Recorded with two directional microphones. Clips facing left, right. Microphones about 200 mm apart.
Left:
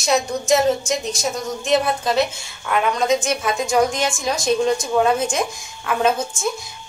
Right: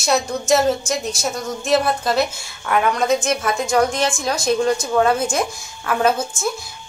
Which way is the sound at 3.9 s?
Centre (ahead or behind).